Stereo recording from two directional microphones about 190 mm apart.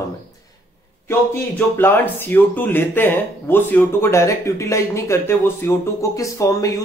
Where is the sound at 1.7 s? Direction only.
10° left (ahead or behind).